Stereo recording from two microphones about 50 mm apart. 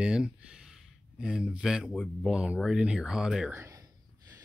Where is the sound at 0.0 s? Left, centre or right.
Centre.